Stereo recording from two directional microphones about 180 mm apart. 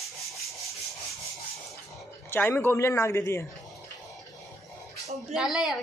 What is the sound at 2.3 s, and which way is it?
A man's voice, 10° left (ahead or behind).